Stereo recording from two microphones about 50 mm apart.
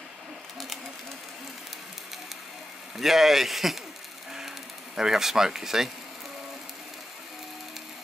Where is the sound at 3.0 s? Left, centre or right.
Centre.